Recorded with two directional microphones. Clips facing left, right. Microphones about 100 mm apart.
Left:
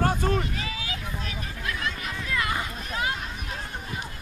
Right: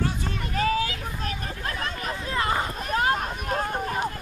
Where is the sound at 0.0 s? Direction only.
50° left (ahead or behind).